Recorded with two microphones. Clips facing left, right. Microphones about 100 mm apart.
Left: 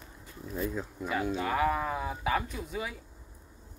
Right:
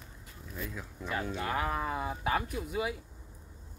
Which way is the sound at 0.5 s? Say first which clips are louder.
Left 8 dB; 30° left (ahead or behind).